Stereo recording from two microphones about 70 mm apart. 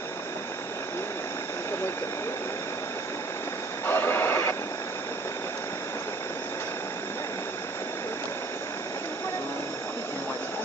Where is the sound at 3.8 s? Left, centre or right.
Left.